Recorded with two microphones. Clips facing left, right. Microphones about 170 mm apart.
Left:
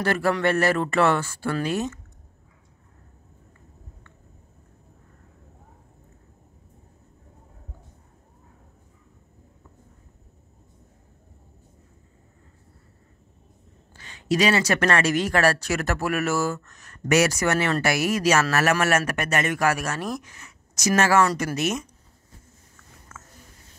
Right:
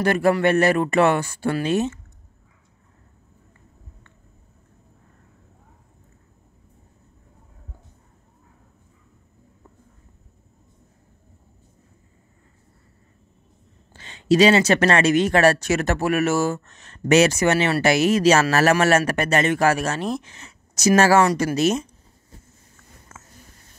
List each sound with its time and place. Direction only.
0.0 s speech: 20° right (ahead or behind)
13.9 s speech: 25° right (ahead or behind)
23.1 s a sound: 20° right (ahead or behind)